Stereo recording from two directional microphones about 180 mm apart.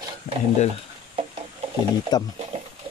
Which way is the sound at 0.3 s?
40° left (ahead or behind).